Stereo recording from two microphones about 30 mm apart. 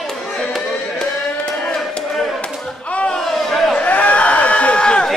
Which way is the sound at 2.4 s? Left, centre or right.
Left.